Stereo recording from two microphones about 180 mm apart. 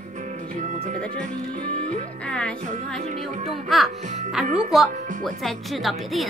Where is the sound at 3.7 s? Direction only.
Centre (ahead or behind).